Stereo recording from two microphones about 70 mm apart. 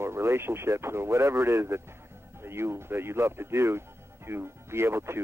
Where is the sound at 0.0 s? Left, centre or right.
Right.